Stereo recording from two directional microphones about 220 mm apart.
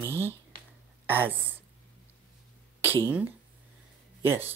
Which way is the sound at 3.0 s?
10° right (ahead or behind).